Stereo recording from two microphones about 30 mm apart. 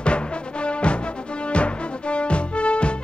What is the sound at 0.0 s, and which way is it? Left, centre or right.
Music, left.